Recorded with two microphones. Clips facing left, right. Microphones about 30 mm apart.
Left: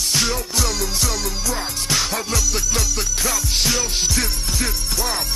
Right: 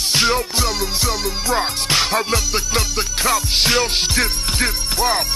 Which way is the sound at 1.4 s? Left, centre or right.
Right.